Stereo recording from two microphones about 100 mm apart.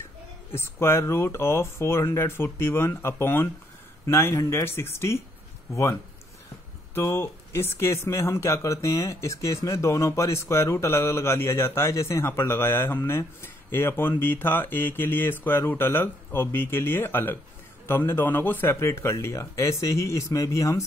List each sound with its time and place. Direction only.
0.6 s speech: 25° left (ahead or behind)